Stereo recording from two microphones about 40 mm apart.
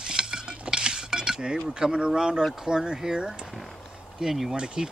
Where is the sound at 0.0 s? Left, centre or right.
Centre.